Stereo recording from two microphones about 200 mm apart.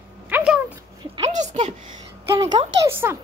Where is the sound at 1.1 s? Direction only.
30° right (ahead or behind).